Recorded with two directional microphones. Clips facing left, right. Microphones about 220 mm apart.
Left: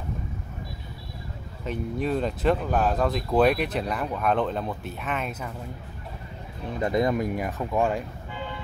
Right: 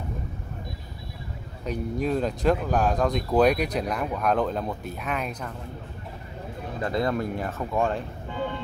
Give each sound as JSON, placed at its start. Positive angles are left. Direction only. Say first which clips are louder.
{"t": 1.6, "sound": "speech", "louder": "right 1 dB", "side_deg": 0}
{"t": 6.8, "sound": "speech", "louder": "left 2 dB", "side_deg": 20}